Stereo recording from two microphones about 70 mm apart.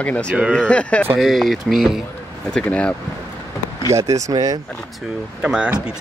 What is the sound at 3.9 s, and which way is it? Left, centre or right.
Speech, right.